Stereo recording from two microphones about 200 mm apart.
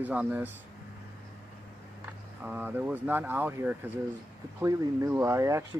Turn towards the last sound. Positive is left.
turn(degrees=-15)  # may be behind; listen again after turning